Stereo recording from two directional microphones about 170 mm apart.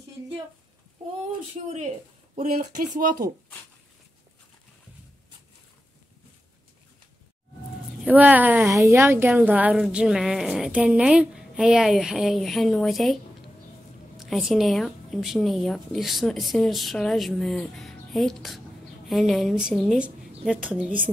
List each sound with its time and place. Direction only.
1.5 s speech: 40° right (ahead or behind)
8.0 s a woman's voice: 10° right (ahead or behind)